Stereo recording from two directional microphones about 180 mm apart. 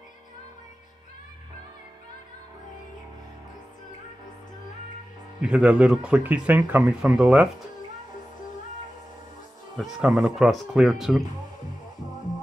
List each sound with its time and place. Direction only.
5.4 s speech: 5° right (ahead or behind)
9.8 s speech: centre (ahead or behind)